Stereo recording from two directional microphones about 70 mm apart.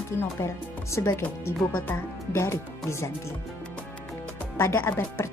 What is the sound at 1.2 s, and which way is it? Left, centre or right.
Speech, left.